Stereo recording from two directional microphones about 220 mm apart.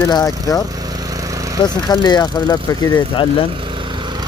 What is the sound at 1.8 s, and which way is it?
Speech, 20° left (ahead or behind).